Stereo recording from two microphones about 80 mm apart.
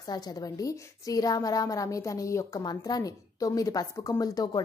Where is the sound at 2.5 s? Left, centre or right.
Left.